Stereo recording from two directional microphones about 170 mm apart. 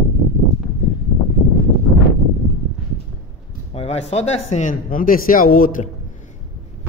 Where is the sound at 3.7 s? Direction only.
40° left (ahead or behind); by 5.9 s 55° left (ahead or behind).